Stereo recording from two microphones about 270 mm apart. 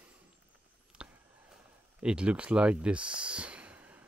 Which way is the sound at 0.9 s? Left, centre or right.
Centre.